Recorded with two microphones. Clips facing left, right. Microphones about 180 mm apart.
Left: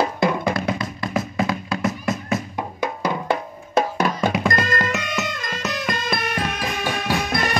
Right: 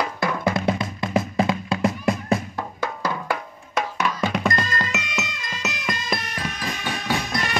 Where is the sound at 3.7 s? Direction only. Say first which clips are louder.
Left 5 dB; 35° left (ahead or behind).